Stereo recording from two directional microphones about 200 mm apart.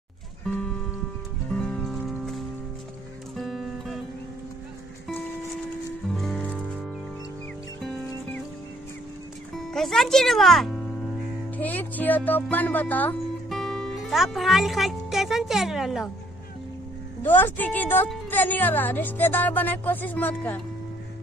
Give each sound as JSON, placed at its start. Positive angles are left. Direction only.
{"t": 0.5, "sound": "music", "side_deg": 5}
{"t": 6.0, "sound": "music", "side_deg": 0}
{"t": 9.7, "sound": "speech", "side_deg": 0}
{"t": 17.2, "sound": "a woman's voice", "side_deg": 10}